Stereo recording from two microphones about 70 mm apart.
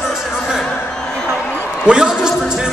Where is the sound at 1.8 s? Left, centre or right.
Centre.